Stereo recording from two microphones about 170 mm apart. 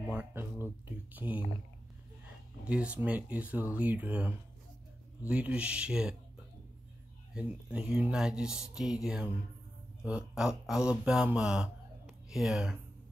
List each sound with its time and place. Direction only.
0.1 s speech: 10° right (ahead or behind)
2.6 s speech: 5° right (ahead or behind)
7.3 s speech: 5° right (ahead or behind)